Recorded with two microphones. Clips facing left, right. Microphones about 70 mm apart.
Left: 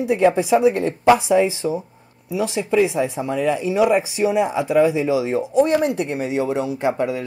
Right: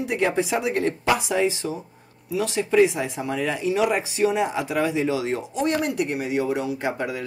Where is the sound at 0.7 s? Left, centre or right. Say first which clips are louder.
Left 6 dB; left.